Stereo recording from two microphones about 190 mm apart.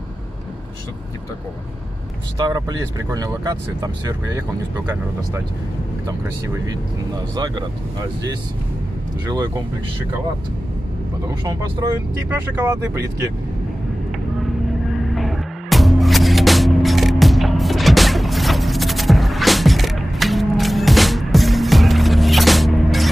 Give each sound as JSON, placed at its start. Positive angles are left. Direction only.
{"t": 2.3, "sound": "speech", "side_deg": -20}
{"t": 11.2, "sound": "speech", "side_deg": -20}
{"t": 15.1, "sound": "music", "side_deg": 0}